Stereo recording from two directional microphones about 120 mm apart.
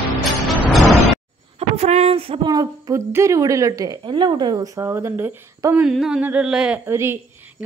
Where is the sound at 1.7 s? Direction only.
65° right (ahead or behind).